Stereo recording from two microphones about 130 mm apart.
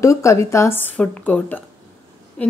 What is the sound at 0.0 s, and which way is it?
A woman's voice, 25° left (ahead or behind).